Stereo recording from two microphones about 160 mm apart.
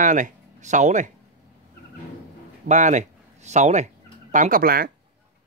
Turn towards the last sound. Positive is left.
turn(degrees=-65)  # may be behind; listen again after turning